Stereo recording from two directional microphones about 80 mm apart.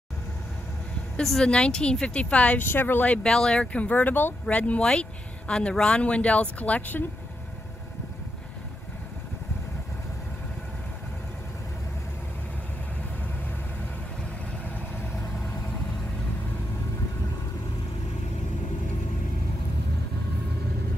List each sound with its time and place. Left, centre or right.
1.2 s speech: centre
2.6 s speech: left
3.3 s speech: centre